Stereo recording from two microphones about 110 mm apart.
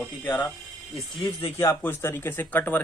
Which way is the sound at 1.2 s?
50° left (ahead or behind).